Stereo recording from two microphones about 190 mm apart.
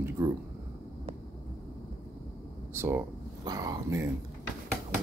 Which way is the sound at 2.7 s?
15° right (ahead or behind).